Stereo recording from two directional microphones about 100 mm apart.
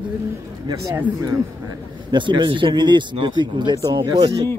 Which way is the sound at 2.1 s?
55° right (ahead or behind).